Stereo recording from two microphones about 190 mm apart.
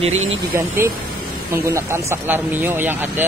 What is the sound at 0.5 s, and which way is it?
Speech, 10° right (ahead or behind).